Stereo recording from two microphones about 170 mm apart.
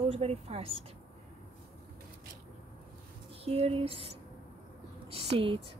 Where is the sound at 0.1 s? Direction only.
35° right (ahead or behind).